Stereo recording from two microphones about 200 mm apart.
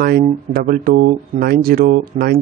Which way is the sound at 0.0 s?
50° right (ahead or behind).